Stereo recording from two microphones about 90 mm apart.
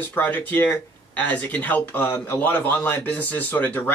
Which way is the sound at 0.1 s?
20° left (ahead or behind).